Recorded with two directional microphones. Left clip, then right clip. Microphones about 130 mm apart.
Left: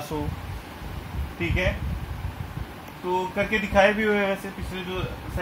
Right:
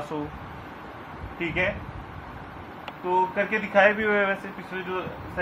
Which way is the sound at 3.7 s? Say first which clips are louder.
Even; 55° left (ahead or behind).